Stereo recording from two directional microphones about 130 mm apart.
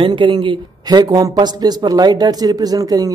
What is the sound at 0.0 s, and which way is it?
A man's voice, 40° right (ahead or behind).